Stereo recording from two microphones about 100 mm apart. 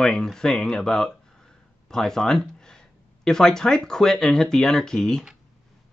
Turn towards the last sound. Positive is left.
turn(degrees=5)  # may be behind; listen again after turning